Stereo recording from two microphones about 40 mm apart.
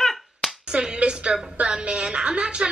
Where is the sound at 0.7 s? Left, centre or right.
Right.